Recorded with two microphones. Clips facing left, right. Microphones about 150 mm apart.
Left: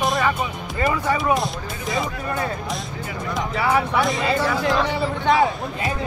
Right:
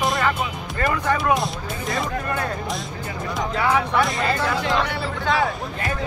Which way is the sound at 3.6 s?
5° left (ahead or behind).